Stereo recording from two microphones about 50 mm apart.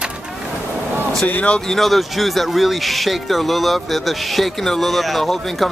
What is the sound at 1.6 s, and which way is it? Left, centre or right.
Speech, centre.